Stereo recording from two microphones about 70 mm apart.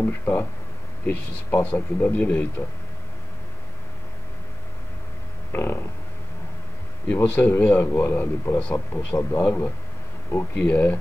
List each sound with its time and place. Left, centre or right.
0.0 s speech: left
5.5 s a sound: left
7.2 s speech: left
7.8 s speech: left